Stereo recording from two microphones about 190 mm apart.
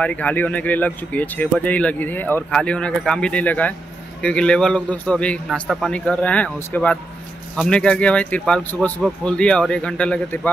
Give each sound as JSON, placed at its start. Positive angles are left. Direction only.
{"t": 0.0, "sound": "speech", "side_deg": 5}